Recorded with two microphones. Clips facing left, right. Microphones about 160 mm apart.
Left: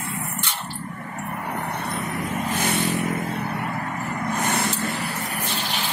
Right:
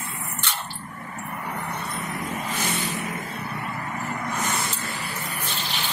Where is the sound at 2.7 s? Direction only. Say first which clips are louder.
Left 6 dB; 65° left (ahead or behind).